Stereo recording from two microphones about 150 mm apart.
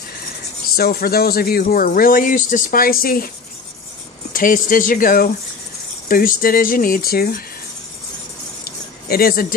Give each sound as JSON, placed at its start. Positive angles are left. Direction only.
{"t": 0.7, "sound": "speech", "side_deg": 90}
{"t": 4.3, "sound": "speech", "side_deg": 65}
{"t": 8.6, "sound": "a sound", "side_deg": 90}